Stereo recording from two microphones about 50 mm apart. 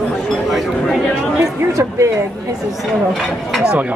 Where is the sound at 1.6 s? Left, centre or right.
Right.